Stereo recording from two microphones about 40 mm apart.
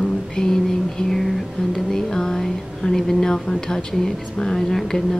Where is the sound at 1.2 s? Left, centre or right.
Centre.